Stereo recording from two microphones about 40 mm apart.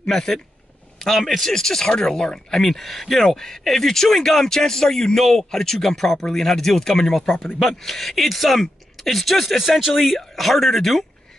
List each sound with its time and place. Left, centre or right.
0.0 s speech: centre
1.0 s speech: centre
2.6 s speech: centre
9.6 s speech: centre